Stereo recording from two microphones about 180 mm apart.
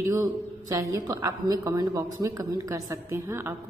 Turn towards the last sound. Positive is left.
turn(degrees=-15)  # may be behind; listen again after turning